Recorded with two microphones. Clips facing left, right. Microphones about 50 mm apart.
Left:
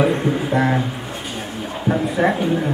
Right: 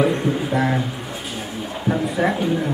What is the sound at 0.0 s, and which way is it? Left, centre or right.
Speech, centre.